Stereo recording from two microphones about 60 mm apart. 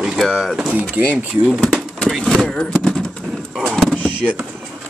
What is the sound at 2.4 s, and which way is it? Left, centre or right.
Speech, centre.